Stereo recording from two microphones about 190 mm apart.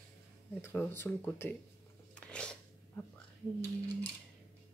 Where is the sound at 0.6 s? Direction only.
10° left (ahead or behind).